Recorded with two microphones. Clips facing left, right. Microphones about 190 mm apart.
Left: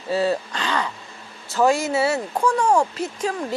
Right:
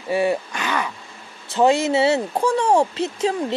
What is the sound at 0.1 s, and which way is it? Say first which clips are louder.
Speech: right 1 dB; 15° right (ahead or behind).